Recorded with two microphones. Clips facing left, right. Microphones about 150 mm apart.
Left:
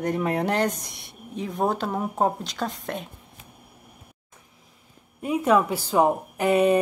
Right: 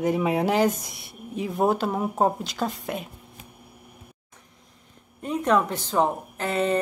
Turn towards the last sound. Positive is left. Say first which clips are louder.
# left 5 dB
turn(degrees=15)  # may be behind; listen again after turning